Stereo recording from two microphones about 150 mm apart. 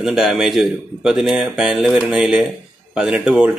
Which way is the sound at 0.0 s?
Centre (ahead or behind).